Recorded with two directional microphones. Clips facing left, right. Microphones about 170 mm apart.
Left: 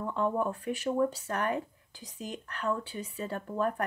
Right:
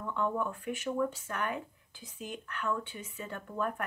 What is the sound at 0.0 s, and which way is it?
Speech, 35° left (ahead or behind).